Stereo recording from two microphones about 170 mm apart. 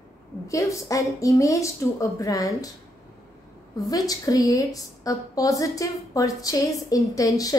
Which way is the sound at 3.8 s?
20° left (ahead or behind).